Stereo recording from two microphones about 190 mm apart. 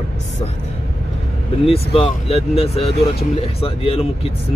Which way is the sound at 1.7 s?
30° left (ahead or behind).